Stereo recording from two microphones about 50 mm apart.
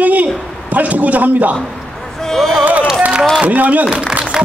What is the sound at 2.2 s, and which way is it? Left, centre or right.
Speech, centre.